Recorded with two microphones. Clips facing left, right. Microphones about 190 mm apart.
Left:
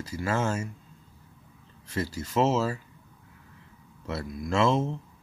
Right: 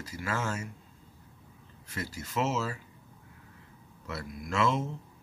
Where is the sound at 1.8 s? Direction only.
30° left (ahead or behind).